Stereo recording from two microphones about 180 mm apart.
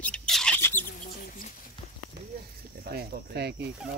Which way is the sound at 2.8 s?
60° right (ahead or behind).